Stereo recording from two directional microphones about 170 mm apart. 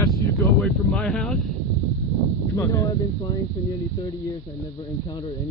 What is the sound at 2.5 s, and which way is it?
Speech, 20° left (ahead or behind).